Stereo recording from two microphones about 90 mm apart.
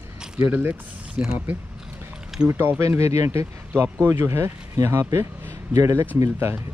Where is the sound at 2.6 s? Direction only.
25° right (ahead or behind).